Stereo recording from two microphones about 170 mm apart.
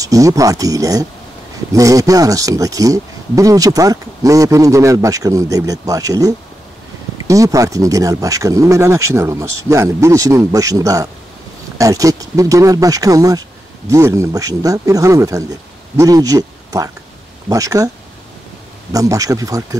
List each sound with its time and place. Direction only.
0.0 s speech: 20° right (ahead or behind)
18.9 s speech: 20° right (ahead or behind)